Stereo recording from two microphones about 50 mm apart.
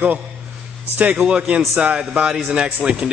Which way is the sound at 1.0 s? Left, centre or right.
Right.